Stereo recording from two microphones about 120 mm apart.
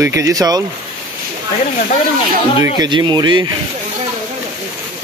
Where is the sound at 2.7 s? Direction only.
40° right (ahead or behind).